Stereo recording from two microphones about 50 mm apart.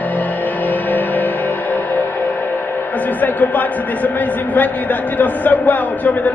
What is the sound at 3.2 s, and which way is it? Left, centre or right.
A man's voice, left.